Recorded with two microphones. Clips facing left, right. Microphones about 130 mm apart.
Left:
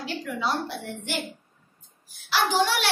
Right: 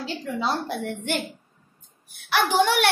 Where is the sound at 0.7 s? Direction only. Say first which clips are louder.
Right 5 dB; 55° right (ahead or behind).